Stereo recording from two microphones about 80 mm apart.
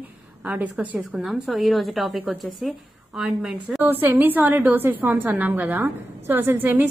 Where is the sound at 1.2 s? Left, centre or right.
Centre.